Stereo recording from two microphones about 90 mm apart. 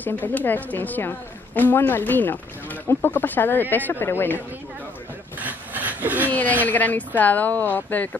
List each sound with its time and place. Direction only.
0.0 s a woman's voice: 20° left (ahead or behind)
5.4 s a sound: 20° right (ahead or behind)
6.2 s a woman's voice: 20° left (ahead or behind)